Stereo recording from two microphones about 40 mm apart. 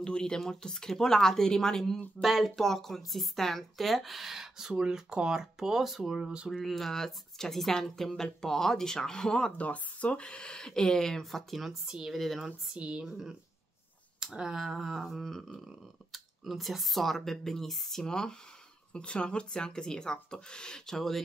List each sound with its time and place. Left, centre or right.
0.0 s speech: centre
4.7 s speech: right; by 6.1 s centre
6.3 s speech: right
6.6 s speech: centre
9.6 s speech: left; by 11.4 s centre
11.5 s speech: centre
12.7 s speech: right
13.0 s speech: centre
15.0 s speech: centre